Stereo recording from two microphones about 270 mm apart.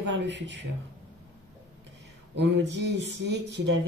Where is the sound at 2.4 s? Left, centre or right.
Right.